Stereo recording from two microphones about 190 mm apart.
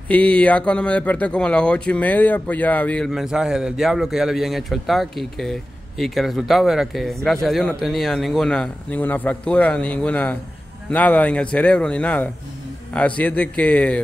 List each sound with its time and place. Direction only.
0.1 s a man's voice: 5° left (ahead or behind)